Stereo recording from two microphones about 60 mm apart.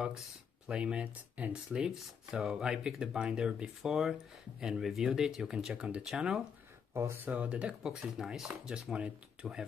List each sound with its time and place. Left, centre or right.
0.7 s speech: centre
1.0 s speech: right
1.5 s speech: centre
6.9 s speech: right
7.2 s speech: right